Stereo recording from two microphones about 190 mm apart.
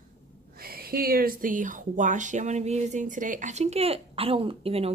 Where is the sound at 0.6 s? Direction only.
50° right (ahead or behind); by 4.9 s 30° right (ahead or behind).